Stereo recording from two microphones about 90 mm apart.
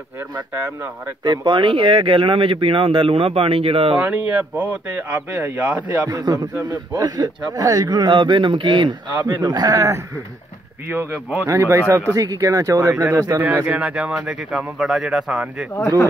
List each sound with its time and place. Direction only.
1.2 s speech: 55° right (ahead or behind); by 4.0 s 90° right
4.0 s speech: 15° right (ahead or behind)
6.0 s a man's voice: 40° right (ahead or behind); by 8.9 s 65° right (ahead or behind)
9.4 s speech: 45° right (ahead or behind)
10.9 s speech: 25° right (ahead or behind)
13.7 s speech: 15° right (ahead or behind)